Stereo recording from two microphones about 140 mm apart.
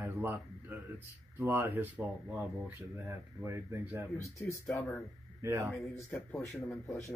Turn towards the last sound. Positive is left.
turn(degrees=20)  # may be behind; listen again after turning